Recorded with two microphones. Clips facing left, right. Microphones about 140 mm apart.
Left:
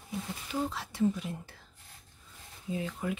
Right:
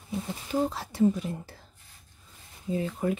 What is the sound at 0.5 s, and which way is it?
Speech, 40° right (ahead or behind).